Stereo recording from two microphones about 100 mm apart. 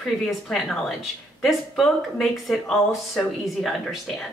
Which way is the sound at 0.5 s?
Centre (ahead or behind).